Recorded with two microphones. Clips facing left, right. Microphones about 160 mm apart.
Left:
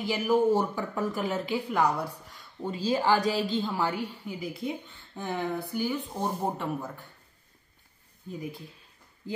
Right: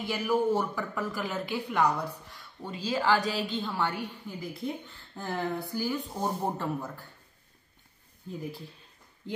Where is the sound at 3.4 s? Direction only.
40° left (ahead or behind).